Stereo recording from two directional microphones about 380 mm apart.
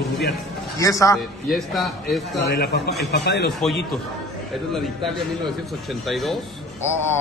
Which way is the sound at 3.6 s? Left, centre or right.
Centre.